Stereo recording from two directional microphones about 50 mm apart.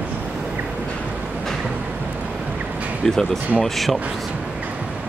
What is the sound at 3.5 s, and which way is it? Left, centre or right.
Speech, centre.